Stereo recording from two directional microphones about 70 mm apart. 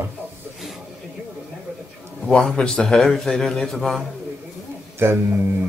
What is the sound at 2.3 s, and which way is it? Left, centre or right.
A man's voice, centre.